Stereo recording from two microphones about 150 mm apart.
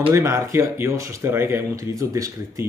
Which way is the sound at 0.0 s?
20° right (ahead or behind).